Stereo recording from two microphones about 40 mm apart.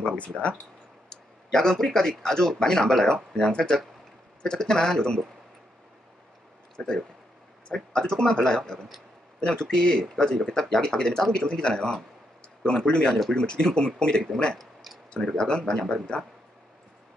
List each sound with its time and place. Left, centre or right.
0.4 s speech: centre
6.8 s speech: centre
14.6 s a sound: centre
15.3 s speech: centre